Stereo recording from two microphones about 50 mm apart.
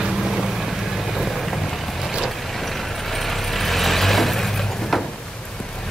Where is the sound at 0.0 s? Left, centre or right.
Centre.